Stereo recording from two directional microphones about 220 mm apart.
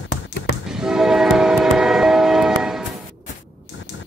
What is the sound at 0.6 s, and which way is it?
Train, centre (ahead or behind).